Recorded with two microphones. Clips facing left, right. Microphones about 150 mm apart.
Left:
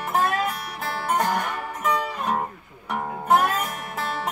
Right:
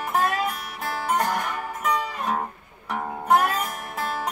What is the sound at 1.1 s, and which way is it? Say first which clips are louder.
Music: left 1 dB; centre (ahead or behind).